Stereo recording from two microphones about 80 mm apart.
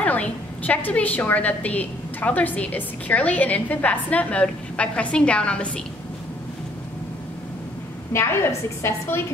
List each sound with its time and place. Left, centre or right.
0.0 s a woman's voice: centre
8.1 s a woman's voice: left